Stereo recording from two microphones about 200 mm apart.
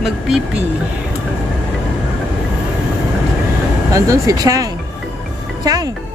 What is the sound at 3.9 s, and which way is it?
Speech, 15° right (ahead or behind).